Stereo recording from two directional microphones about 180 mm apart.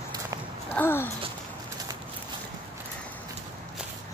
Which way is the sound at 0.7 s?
15° left (ahead or behind).